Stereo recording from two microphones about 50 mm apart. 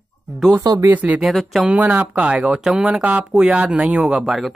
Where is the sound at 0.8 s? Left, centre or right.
Right.